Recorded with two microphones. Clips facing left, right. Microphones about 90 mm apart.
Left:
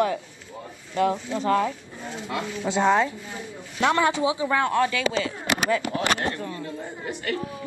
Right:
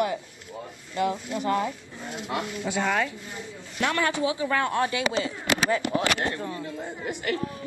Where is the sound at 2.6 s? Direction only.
25° left (ahead or behind).